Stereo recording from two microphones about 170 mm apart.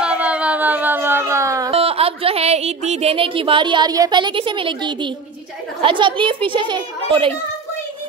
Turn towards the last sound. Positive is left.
turn(degrees=-30)  # may be behind; listen again after turning